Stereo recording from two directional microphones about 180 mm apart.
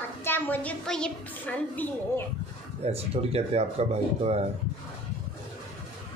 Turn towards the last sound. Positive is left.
turn(degrees=-35)  # may be behind; listen again after turning